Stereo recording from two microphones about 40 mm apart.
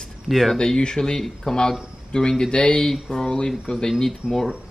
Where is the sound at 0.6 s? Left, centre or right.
Left.